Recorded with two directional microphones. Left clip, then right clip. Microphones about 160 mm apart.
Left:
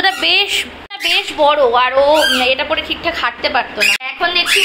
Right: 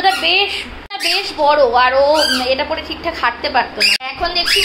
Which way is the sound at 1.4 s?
15° left (ahead or behind).